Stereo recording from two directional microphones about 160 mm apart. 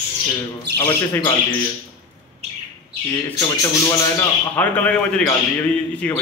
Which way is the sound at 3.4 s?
20° left (ahead or behind).